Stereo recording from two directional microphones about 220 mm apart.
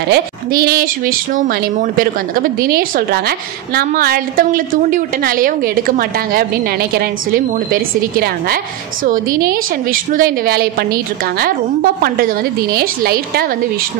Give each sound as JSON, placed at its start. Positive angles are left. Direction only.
{"t": 0.1, "sound": "a woman's voice", "side_deg": -40}